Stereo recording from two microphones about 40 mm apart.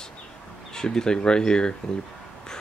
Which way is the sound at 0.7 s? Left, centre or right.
Centre.